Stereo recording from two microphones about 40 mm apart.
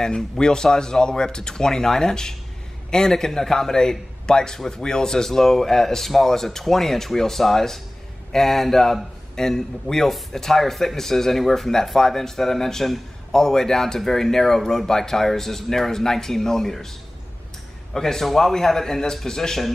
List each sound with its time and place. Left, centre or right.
0.0 s speech: centre
17.9 s speech: centre